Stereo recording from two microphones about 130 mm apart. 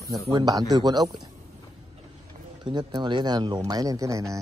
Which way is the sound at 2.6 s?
35° right (ahead or behind).